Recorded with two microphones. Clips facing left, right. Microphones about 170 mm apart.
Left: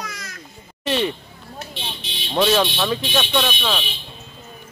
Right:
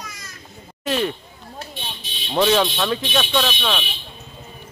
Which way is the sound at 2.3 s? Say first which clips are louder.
Even; centre (ahead or behind).